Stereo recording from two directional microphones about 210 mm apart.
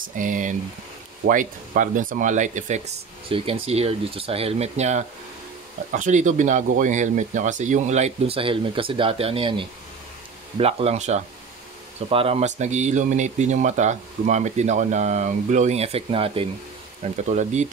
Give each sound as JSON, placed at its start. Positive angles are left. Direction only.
{"t": 0.0, "sound": "speech", "side_deg": -40}
{"t": 3.3, "sound": "speech", "side_deg": -25}